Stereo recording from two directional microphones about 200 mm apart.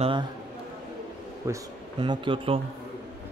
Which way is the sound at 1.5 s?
25° right (ahead or behind).